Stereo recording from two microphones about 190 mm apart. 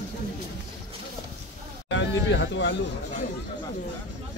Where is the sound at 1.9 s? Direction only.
70° left (ahead or behind).